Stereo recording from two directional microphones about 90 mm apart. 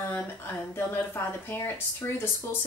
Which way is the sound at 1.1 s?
25° left (ahead or behind).